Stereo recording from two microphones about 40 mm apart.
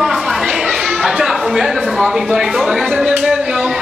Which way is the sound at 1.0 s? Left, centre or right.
Centre.